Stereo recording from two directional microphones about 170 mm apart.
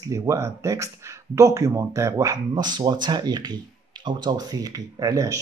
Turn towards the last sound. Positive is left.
turn(degrees=-20)  # may be behind; listen again after turning